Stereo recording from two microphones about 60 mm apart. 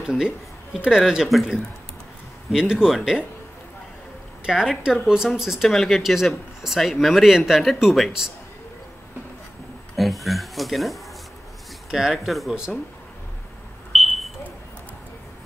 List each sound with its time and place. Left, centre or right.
0.0 s speech: centre
4.5 s speech: centre
9.9 s speech: centre
13.9 s smoke detector: centre